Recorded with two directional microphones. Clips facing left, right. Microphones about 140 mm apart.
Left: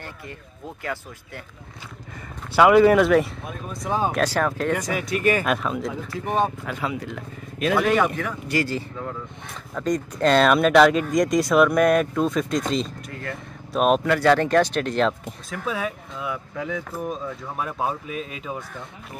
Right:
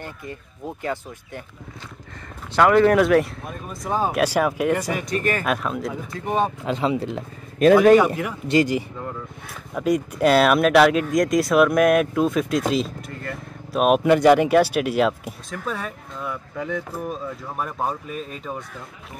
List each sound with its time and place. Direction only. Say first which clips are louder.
2.5 s speech: left 1 dB; 10° left (ahead or behind); by 4.9 s 10° right (ahead or behind)
4.9 s speech: left 2 dB; 10° left (ahead or behind)
5.4 s speech: even; centre (ahead or behind)
6.6 s speech: right 6 dB; 25° right (ahead or behind)
7.5 s a man's voice: right 8 dB; 45° right (ahead or behind)
7.9 s speech: right 6 dB; 10° right (ahead or behind)
14.0 s speech: right 4 dB; 15° right (ahead or behind); by 18.6 s 5° left (ahead or behind)